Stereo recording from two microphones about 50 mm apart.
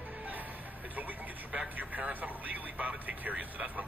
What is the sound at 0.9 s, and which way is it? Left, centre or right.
Radio, right.